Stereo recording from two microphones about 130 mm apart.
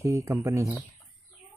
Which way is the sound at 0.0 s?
20° right (ahead or behind).